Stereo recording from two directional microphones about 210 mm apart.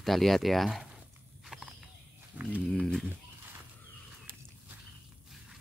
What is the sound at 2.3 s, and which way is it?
Speech, 5° right (ahead or behind).